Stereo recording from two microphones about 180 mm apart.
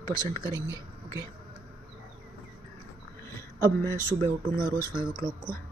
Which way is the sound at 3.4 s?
15° left (ahead or behind).